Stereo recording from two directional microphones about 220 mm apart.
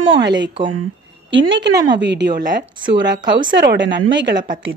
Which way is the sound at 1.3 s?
60° right (ahead or behind).